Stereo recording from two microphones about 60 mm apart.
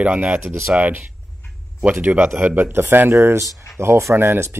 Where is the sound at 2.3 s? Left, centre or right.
Right.